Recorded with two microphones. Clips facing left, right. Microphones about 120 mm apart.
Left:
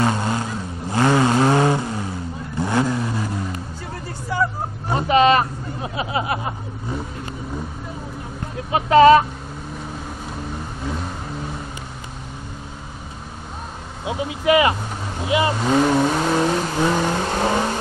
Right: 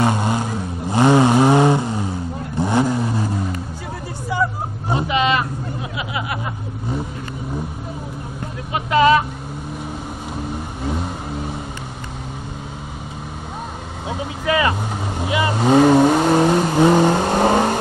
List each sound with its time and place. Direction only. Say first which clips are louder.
0.0 s vehicle: right 2 dB; 15° right (ahead or behind)
4.3 s vehicle: right 1 dB; 15° right (ahead or behind)
4.9 s hubbub: left 4 dB; 40° left (ahead or behind)
8.7 s vehicle: left 4 dB; 35° left (ahead or behind)
14.0 s vehicle: left 3 dB; 20° left (ahead or behind)
15.5 s vehicle: right 9 dB; 25° right (ahead or behind)